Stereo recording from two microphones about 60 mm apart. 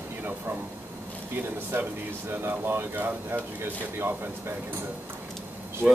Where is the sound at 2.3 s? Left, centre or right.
Right.